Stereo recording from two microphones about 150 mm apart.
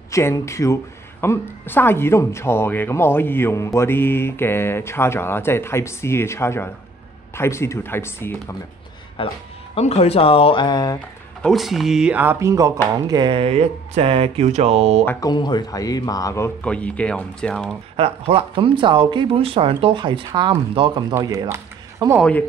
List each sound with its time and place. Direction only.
0.1 s speech: 20° left (ahead or behind)
9.2 s speech: 35° left (ahead or behind)
11.4 s speech: centre (ahead or behind); by 15.0 s 45° right (ahead or behind)
15.0 s speech: 25° left (ahead or behind)
16.6 s speech: 10° left (ahead or behind)
17.9 s speech: 40° right (ahead or behind); by 22.2 s 20° right (ahead or behind)